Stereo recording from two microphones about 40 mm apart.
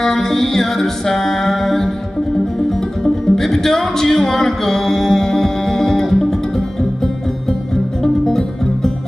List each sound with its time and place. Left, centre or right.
0.0 s music: centre
3.0 s music: centre
8.0 s music: centre